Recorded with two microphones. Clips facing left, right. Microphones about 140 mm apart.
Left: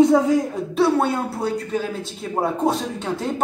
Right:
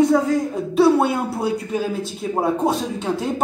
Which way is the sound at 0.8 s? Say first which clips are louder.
Right 3 dB; 10° right (ahead or behind).